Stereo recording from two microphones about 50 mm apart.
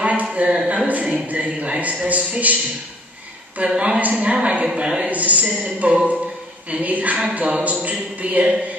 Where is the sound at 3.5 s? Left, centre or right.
Right.